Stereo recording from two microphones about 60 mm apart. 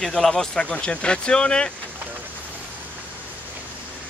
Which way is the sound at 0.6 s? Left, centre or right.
Centre.